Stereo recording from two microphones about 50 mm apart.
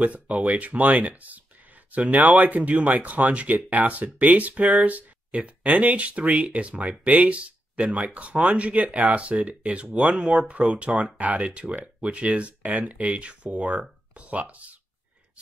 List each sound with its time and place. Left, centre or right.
0.0 s speech: right